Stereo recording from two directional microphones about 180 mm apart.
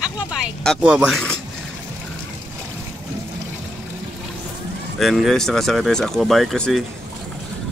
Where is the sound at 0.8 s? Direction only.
5° right (ahead or behind).